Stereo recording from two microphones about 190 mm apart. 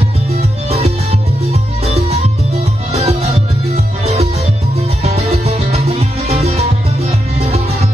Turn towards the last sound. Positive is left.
turn(degrees=-35)  # may be behind; listen again after turning